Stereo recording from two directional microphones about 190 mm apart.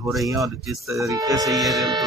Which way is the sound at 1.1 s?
20° right (ahead or behind).